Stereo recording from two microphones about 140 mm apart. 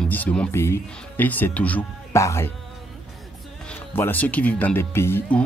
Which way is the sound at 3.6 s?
15° left (ahead or behind).